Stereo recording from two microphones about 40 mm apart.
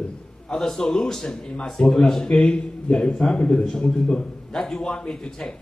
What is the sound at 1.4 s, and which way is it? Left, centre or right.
Speech, left.